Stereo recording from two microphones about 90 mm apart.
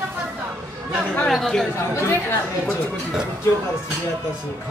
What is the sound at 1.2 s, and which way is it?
Speech, 5° left (ahead or behind).